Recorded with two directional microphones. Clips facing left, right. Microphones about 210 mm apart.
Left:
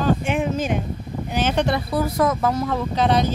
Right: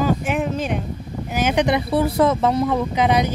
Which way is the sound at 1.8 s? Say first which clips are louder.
Right 3 dB; 30° right (ahead or behind).